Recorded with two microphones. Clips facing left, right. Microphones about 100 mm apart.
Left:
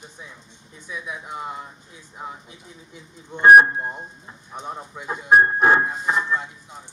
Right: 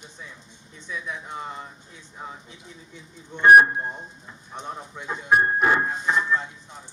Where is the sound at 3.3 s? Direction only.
30° left (ahead or behind).